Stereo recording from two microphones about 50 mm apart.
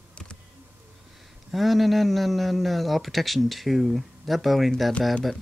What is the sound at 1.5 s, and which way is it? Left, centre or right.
Speech, centre.